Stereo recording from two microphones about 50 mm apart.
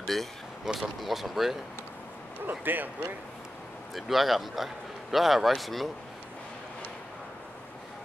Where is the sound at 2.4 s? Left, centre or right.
Right.